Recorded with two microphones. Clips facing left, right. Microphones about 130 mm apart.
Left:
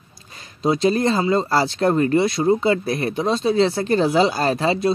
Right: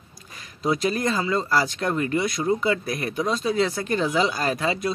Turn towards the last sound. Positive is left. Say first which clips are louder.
# left 5 dB
turn(degrees=30)  # may be behind; listen again after turning